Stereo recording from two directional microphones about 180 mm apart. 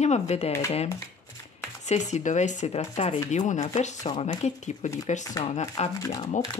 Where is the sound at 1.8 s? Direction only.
40° left (ahead or behind).